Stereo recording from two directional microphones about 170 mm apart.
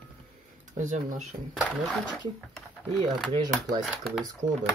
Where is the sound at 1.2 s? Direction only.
Centre (ahead or behind).